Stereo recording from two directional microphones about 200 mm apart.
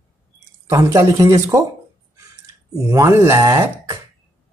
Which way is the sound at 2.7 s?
15° right (ahead or behind).